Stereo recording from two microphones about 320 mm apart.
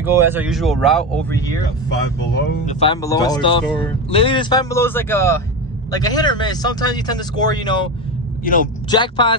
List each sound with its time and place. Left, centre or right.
0.0 s speech: centre
2.6 s speech: centre
8.5 s speech: left
8.9 s speech: centre